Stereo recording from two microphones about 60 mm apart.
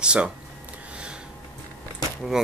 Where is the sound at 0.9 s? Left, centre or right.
Centre.